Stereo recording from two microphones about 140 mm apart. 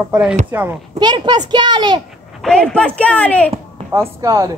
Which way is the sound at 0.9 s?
30° right (ahead or behind).